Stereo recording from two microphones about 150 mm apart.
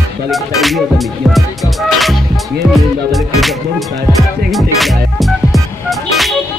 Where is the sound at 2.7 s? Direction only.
Centre (ahead or behind).